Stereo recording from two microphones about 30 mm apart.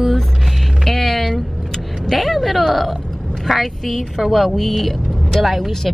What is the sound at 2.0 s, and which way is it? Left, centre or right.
A woman's voice, centre.